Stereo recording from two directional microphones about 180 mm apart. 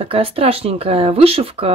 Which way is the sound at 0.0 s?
30° right (ahead or behind).